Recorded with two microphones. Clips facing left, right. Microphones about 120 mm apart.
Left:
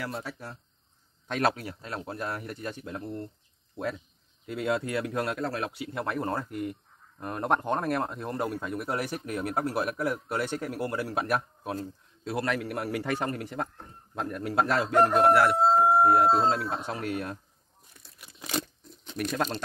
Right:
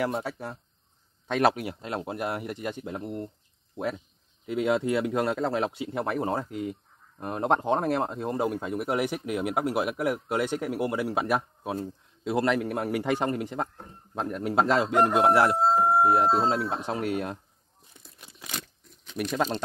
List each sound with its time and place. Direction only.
0.0 s speech: 20° right (ahead or behind)
4.5 s speech: 20° right (ahead or behind)
15.6 s speech: centre (ahead or behind)
16.1 s speech: 20° right (ahead or behind)
17.9 s tearing: 20° right (ahead or behind)
19.1 s speech: 10° right (ahead or behind)